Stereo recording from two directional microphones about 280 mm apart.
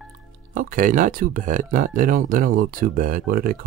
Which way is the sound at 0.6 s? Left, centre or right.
Right.